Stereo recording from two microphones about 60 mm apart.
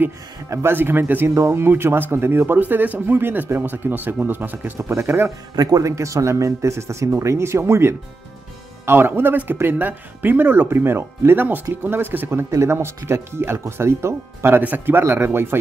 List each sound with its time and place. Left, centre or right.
0.5 s speech: right
0.7 s speech: right
1.3 s speech: right
4.7 s speech: right
5.6 s speech: right
12.4 s speech: right
14.6 s speech: right